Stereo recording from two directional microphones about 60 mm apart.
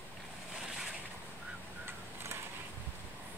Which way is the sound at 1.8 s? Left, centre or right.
Right.